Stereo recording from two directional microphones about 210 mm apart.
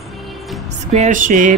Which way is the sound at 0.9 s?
35° right (ahead or behind).